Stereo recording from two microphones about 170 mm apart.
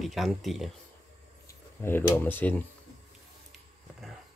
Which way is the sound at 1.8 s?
10° left (ahead or behind).